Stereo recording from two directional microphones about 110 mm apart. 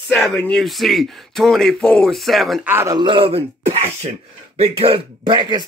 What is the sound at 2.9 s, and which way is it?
Speech, 45° right (ahead or behind).